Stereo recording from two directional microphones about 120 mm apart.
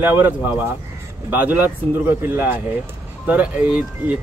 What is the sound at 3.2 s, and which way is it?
Speech, 10° right (ahead or behind).